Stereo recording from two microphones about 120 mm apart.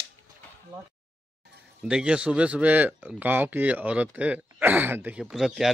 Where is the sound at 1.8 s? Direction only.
5° right (ahead or behind).